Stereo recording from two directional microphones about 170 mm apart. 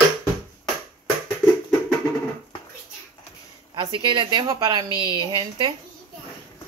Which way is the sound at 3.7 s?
30° right (ahead or behind).